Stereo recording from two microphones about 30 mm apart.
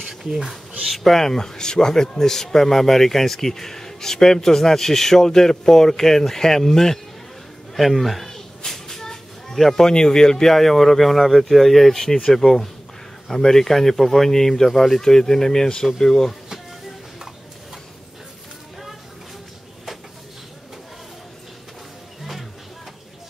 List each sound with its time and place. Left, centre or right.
0.2 s speech: centre
0.5 s speech: centre
1.0 s speech: centre
7.7 s a man's voice: centre
8.3 s a sound: centre
9.6 s speech: centre
9.8 s speech: left
10.5 s speech: centre